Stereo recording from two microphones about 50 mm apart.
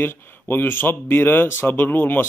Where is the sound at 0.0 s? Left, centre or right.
Left.